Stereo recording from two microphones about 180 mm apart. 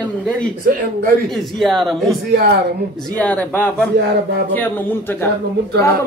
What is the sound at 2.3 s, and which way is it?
Speech, 65° right (ahead or behind).